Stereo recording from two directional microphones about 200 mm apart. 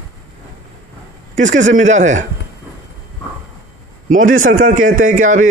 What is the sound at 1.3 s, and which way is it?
Speech, 35° right (ahead or behind).